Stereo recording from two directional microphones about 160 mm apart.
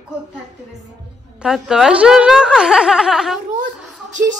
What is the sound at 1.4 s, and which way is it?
A woman's voice, 5° right (ahead or behind).